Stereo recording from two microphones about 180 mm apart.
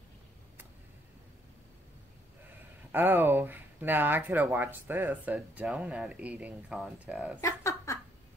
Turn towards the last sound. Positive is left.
turn(degrees=15)  # may be behind; listen again after turning